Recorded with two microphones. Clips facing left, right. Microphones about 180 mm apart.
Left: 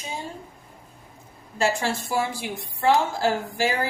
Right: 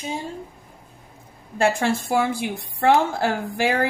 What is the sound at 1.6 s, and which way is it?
A woman's voice, 55° right (ahead or behind).